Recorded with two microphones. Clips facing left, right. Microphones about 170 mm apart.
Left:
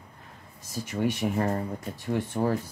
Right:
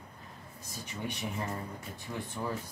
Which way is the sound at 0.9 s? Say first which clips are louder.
Left 11 dB; 70° left (ahead or behind).